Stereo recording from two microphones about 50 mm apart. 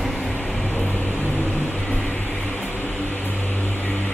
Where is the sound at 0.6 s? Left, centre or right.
Left.